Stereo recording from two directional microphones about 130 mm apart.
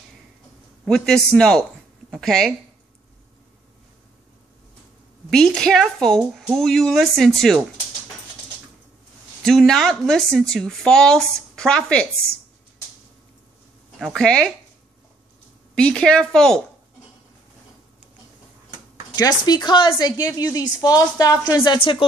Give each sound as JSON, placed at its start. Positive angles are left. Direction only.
{"t": 0.8, "sound": "speech", "side_deg": 5}
{"t": 5.3, "sound": "speech", "side_deg": 5}
{"t": 9.4, "sound": "speech", "side_deg": 5}
{"t": 13.9, "sound": "speech", "side_deg": 0}
{"t": 15.7, "sound": "speech", "side_deg": 5}
{"t": 19.1, "sound": "a woman's voice", "side_deg": 30}